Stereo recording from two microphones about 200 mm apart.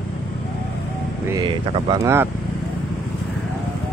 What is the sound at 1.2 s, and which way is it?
A man's voice, 20° right (ahead or behind).